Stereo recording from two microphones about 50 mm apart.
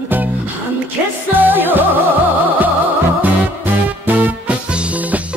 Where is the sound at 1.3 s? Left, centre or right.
Right.